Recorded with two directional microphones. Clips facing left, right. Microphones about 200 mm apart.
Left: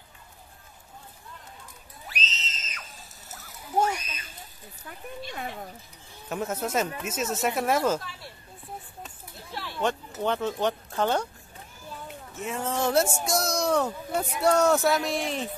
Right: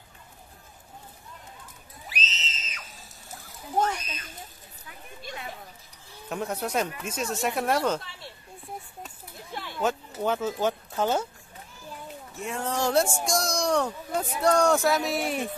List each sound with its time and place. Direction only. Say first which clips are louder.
2.0 s screaming: even; 5° right (ahead or behind)
3.7 s a sound: left 1 dB; 10° left (ahead or behind)
6.2 s speech: left 1 dB; centre (ahead or behind)
9.5 s a sound: even; 20° right (ahead or behind)
10.2 s speech: even; 5° right (ahead or behind)
12.4 s speech: even; centre (ahead or behind)